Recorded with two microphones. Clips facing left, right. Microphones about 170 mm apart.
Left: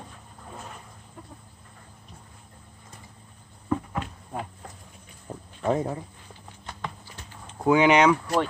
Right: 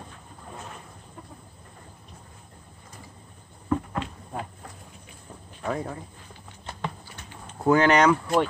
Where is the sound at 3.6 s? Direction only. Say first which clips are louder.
Right 1 dB; 5° left (ahead or behind).